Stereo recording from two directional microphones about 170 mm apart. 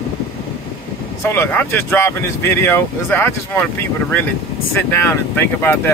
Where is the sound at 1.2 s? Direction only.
15° left (ahead or behind).